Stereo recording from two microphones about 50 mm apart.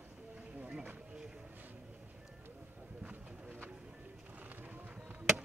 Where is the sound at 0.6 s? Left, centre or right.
Right.